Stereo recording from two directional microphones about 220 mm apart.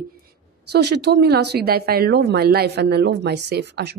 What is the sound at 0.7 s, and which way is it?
A woman's voice, 50° right (ahead or behind).